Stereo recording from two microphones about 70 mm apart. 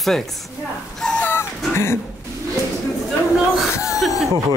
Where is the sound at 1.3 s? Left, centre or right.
Left.